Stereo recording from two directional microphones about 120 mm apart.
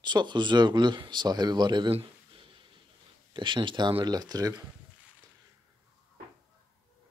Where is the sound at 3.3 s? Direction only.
40° right (ahead or behind).